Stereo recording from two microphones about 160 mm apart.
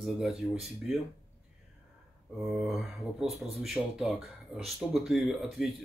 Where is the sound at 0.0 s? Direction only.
Centre (ahead or behind).